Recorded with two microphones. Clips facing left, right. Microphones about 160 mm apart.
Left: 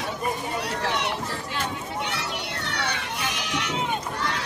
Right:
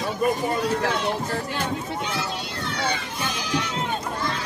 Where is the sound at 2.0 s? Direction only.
70° left (ahead or behind).